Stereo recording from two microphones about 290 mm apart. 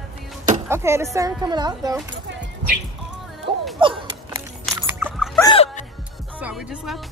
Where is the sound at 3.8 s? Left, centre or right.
Centre.